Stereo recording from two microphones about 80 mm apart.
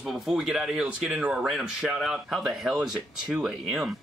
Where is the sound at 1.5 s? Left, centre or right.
Centre.